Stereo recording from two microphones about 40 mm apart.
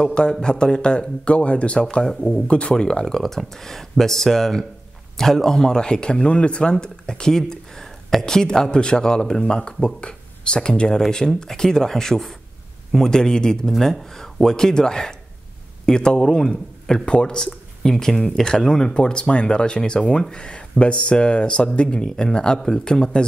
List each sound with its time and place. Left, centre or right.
0.0 s speech: centre
13.7 s speech: centre; by 17.5 s left
17.8 s speech: centre